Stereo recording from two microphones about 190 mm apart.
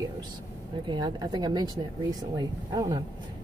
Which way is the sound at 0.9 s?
20° right (ahead or behind).